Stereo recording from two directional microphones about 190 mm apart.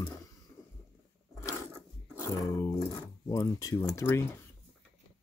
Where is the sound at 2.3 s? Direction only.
20° left (ahead or behind).